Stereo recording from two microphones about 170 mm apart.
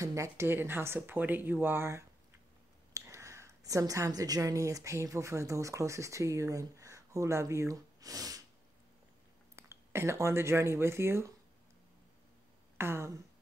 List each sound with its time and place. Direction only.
0.0 s a woman's voice: 20° right (ahead or behind)
9.6 s speech: 15° right (ahead or behind)
12.7 s speech: 15° right (ahead or behind)